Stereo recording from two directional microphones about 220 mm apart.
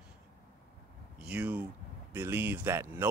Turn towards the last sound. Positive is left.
turn(degrees=-10)  # may be behind; listen again after turning